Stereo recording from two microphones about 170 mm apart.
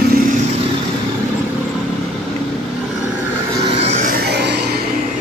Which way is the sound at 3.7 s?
40° right (ahead or behind).